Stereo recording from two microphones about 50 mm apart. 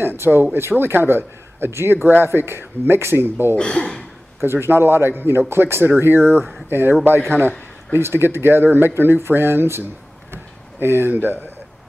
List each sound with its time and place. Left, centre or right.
0.0 s speech: right
3.5 s speech: centre
4.4 s speech: right